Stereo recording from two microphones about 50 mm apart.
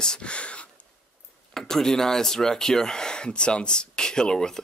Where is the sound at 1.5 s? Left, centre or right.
Centre.